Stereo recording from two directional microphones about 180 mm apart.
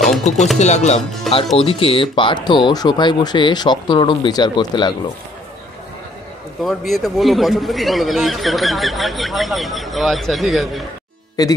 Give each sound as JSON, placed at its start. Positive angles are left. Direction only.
{"t": 0.2, "sound": "speech", "side_deg": 40}
{"t": 1.3, "sound": "music", "side_deg": 0}
{"t": 1.6, "sound": "speech", "side_deg": 30}
{"t": 6.6, "sound": "speech", "side_deg": 0}
{"t": 11.4, "sound": "speech", "side_deg": 20}